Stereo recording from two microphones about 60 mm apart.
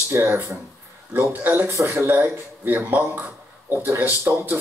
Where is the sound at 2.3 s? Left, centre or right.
Right.